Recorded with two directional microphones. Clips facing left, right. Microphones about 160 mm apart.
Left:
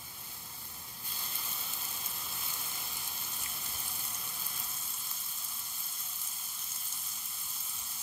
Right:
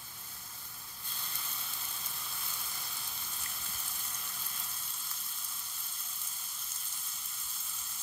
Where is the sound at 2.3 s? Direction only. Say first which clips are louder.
Left 1 dB; 20° left (ahead or behind).